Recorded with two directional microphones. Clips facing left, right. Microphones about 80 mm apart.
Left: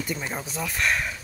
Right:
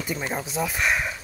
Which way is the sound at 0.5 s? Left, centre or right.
Centre.